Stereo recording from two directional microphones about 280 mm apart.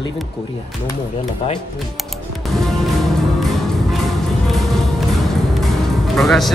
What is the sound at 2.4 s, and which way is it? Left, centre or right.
Music, centre.